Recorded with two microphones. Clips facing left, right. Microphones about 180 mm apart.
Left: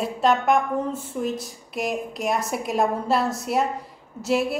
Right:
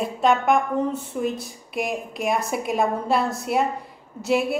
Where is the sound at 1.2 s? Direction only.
55° right (ahead or behind).